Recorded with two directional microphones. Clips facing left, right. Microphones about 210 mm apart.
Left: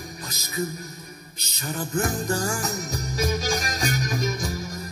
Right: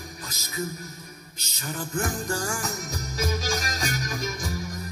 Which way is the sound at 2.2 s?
20° left (ahead or behind).